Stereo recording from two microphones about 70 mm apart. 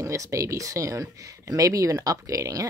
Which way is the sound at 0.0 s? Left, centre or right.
Right.